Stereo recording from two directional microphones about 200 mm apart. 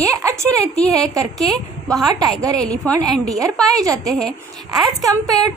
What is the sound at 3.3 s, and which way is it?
A woman's voice, 15° right (ahead or behind).